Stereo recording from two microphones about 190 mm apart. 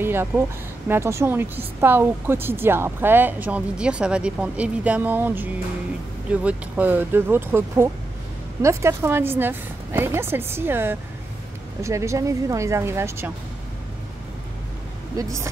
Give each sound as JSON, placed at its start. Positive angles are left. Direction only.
{"t": 0.0, "sound": "a sound", "side_deg": -10}
{"t": 0.8, "sound": "speech", "side_deg": -15}
{"t": 15.1, "sound": "speech", "side_deg": -15}